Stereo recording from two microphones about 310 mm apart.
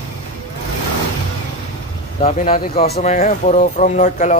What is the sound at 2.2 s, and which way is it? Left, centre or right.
Speech, centre.